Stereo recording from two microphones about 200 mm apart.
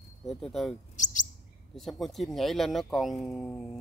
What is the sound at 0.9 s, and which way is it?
Chirp, 40° left (ahead or behind).